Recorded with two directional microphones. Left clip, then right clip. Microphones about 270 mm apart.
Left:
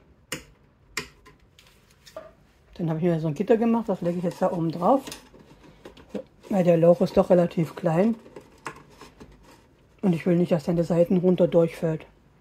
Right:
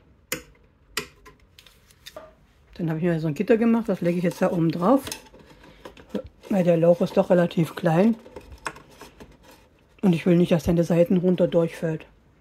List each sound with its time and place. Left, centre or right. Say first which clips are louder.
2.7 s speech: even; centre; by 4.9 s right
6.5 s speech: even; centre
9.9 s speech: right 3 dB; centre